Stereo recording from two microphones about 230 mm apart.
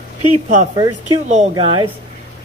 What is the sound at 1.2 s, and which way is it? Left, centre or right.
Speech, right.